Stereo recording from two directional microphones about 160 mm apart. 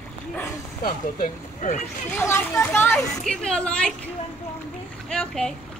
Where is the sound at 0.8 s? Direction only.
55° left (ahead or behind).